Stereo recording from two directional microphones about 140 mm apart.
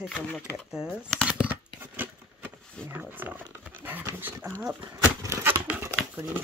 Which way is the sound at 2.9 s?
15° right (ahead or behind).